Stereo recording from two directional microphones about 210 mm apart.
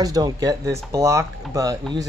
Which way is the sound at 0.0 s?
15° right (ahead or behind).